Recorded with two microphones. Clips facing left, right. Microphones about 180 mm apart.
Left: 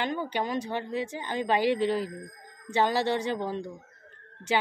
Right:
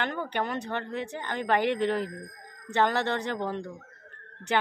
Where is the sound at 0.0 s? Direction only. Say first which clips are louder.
Left 1 dB; 10° left (ahead or behind).